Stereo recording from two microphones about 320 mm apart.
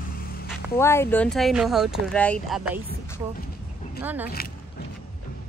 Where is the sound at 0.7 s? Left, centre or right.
Centre.